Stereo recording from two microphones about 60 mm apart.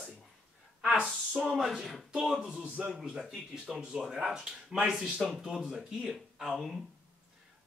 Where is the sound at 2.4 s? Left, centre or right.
Centre.